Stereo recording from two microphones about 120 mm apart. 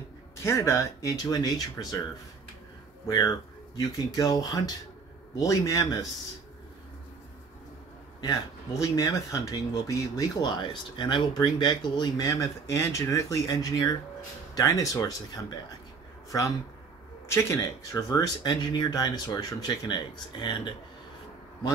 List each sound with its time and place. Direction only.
0.4 s speech: 20° left (ahead or behind)
3.1 s speech: 30° left (ahead or behind)
8.2 s speech: 30° left (ahead or behind)
16.3 s speech: 25° left (ahead or behind)